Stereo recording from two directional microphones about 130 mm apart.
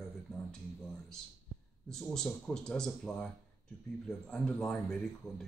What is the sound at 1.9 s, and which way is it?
Speech, 5° left (ahead or behind).